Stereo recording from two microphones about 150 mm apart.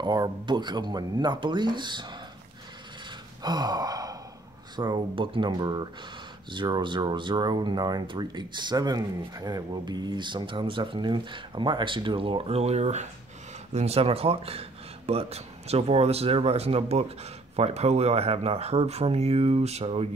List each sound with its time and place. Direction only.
0.0 s speech: 30° right (ahead or behind)
3.4 s sigh: 25° right (ahead or behind)
4.7 s speech: 30° right (ahead or behind)